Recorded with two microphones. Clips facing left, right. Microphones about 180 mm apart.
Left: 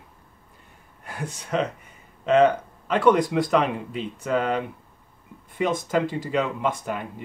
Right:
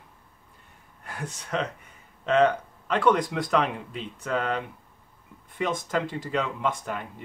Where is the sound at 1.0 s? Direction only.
5° left (ahead or behind).